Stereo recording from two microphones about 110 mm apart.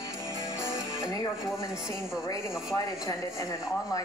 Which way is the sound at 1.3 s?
5° right (ahead or behind).